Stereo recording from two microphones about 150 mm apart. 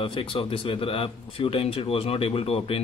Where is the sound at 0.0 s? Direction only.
35° left (ahead or behind).